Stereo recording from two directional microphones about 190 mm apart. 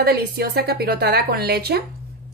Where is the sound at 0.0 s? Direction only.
55° right (ahead or behind).